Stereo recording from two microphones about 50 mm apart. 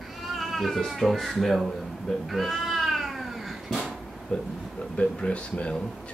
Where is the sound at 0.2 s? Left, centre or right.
Centre.